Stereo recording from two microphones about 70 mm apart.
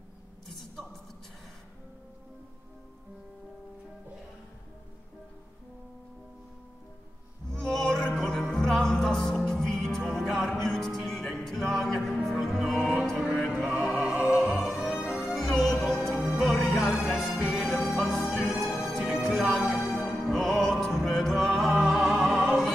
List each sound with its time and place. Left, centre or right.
7.5 s music: centre
13.5 s music: centre
15.2 s music: centre
16.5 s music: left
17.0 s music: centre